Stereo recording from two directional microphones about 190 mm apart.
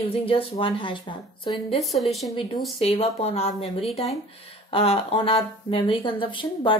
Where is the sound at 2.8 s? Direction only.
30° left (ahead or behind).